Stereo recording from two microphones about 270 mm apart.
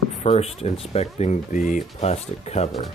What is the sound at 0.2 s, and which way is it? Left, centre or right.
Speech, left.